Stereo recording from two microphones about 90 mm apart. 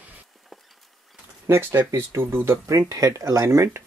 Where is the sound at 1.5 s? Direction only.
25° right (ahead or behind).